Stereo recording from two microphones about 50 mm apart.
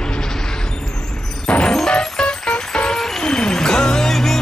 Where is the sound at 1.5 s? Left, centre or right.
Centre.